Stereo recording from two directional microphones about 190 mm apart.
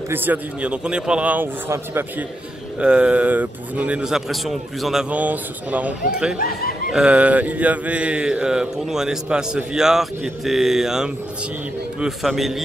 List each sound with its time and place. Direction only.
0.1 s speech: 10° right (ahead or behind)
6.3 s speech: 50° left (ahead or behind)
6.9 s mantra: 5° right (ahead or behind)